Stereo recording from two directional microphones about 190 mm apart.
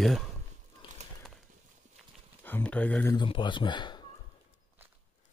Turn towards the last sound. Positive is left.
turn(degrees=25)  # may be behind; listen again after turning